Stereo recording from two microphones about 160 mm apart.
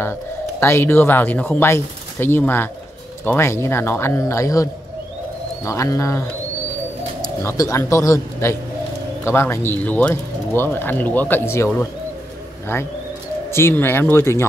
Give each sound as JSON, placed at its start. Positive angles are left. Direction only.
{"t": 0.0, "sound": "a man's voice", "side_deg": 15}
{"t": 13.5, "sound": "a man's voice", "side_deg": 15}